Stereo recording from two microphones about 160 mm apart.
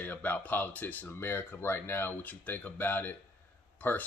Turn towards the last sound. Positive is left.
turn(degrees=10)  # may be behind; listen again after turning